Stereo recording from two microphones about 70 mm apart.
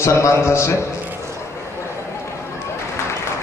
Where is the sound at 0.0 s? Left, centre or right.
Left.